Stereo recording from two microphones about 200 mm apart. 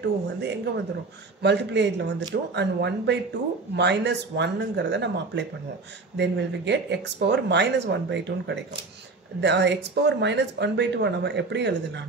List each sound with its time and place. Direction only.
0.0 s speech: 60° right (ahead or behind)